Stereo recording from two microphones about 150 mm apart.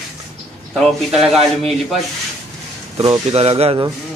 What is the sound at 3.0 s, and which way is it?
Speech, 40° right (ahead or behind).